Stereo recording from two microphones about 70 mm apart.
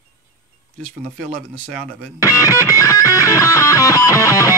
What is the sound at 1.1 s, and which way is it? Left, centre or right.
Speech, centre.